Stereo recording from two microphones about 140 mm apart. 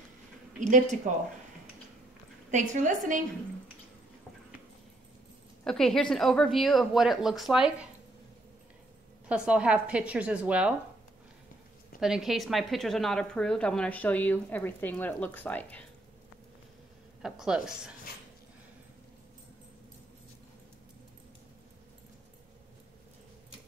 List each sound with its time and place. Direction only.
0.6 s a woman's voice: 65° right (ahead or behind)
2.5 s a woman's voice: 60° right (ahead or behind)
5.6 s a woman's voice: 5° left (ahead or behind)
9.3 s a woman's voice: 5° right (ahead or behind)
12.0 s a woman's voice: centre (ahead or behind)
17.2 s a woman's voice: 5° right (ahead or behind)